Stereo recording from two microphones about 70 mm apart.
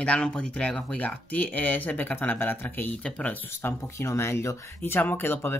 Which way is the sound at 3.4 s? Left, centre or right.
Left.